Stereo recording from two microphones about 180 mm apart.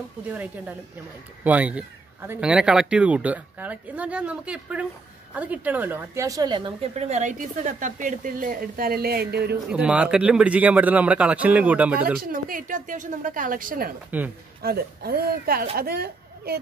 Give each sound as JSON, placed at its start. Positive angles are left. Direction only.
{"t": 0.3, "sound": "speech", "side_deg": -10}
{"t": 7.1, "sound": "a woman's voice", "side_deg": -40}
{"t": 9.7, "sound": "speech", "side_deg": -5}
{"t": 12.2, "sound": "a woman's voice", "side_deg": -50}